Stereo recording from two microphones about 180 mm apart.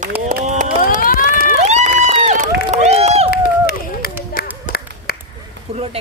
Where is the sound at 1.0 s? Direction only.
50° left (ahead or behind).